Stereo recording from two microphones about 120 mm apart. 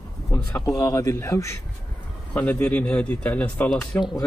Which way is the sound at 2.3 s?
10° left (ahead or behind).